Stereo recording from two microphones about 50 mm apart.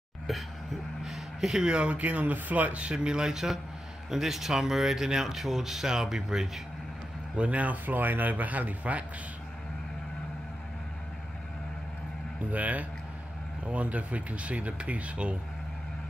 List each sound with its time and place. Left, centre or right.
0.3 s speech: centre
7.3 s a man's voice: right
12.4 s a man's voice: right